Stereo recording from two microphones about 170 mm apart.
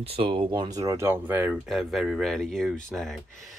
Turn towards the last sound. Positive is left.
turn(degrees=0)  # may be behind; listen again after turning